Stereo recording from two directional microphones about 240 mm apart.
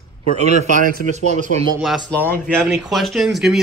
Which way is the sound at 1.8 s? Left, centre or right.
Centre.